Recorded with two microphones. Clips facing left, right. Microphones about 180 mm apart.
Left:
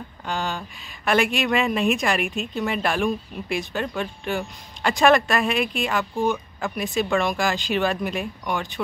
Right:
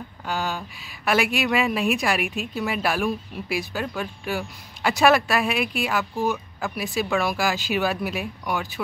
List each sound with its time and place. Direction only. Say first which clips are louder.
0.2 s speech: even; 5° right (ahead or behind)